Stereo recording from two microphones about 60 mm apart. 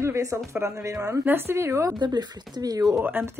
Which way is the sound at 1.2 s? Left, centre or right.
Right.